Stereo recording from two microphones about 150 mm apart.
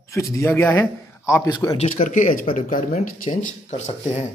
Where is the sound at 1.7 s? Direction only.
55° left (ahead or behind).